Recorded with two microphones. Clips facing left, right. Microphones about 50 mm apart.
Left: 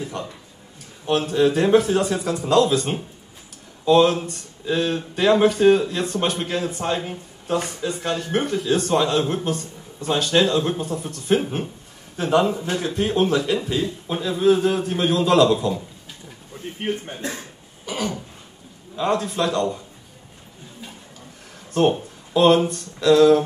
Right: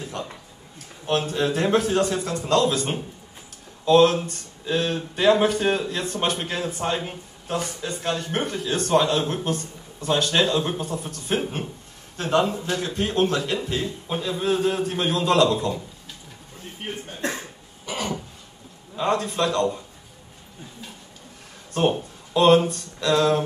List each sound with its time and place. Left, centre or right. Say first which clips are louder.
0.0 s a sound: left 2 dB; centre
1.0 s a man's voice: left 4 dB; centre
17.2 s speech: right 3 dB; right
17.8 s throat clearing: left 2 dB; centre
18.9 s a man's voice: left 1 dB; centre
21.7 s speech: left 3 dB; centre